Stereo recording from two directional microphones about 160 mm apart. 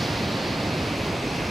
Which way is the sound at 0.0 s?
Centre (ahead or behind).